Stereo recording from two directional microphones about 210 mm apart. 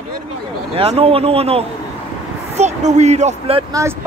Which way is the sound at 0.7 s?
25° right (ahead or behind).